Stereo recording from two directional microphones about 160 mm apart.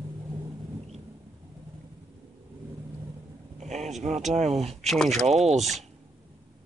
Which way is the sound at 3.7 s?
45° right (ahead or behind).